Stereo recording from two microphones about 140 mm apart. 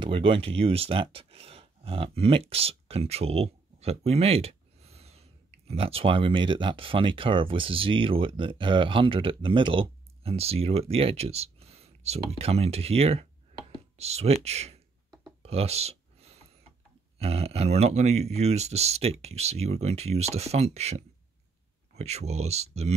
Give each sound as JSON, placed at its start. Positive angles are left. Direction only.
{"t": 0.0, "sound": "speech", "side_deg": -40}
{"t": 15.4, "sound": "a sound", "side_deg": -45}
{"t": 17.2, "sound": "speech", "side_deg": -45}